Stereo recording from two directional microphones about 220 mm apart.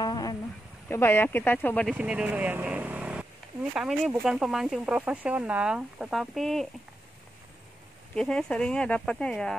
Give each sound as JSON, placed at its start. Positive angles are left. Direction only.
{"t": 0.0, "sound": "a sound", "side_deg": 20}
{"t": 0.8, "sound": "speech", "side_deg": 10}
{"t": 2.0, "sound": "vehicle", "side_deg": -5}
{"t": 3.7, "sound": "speech", "side_deg": -5}
{"t": 8.2, "sound": "speech", "side_deg": 5}